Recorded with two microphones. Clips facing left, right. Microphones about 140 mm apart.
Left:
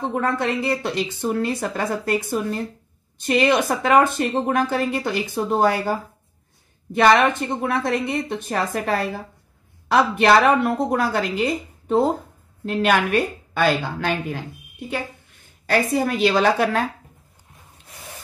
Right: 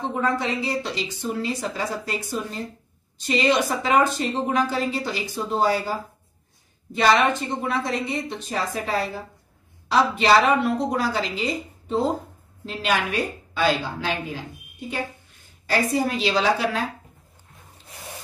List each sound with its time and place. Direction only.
0.1 s a woman's voice: 55° left (ahead or behind)
15.7 s a woman's voice: 55° left (ahead or behind)